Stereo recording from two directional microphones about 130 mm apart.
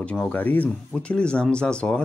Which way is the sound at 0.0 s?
10° left (ahead or behind).